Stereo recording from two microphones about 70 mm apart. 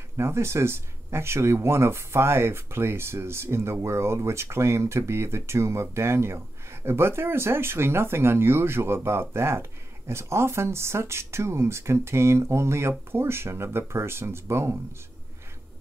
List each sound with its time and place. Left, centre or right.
0.2 s speech: right